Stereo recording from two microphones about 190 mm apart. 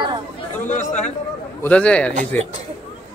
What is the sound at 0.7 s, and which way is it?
Chatter, 40° left (ahead or behind).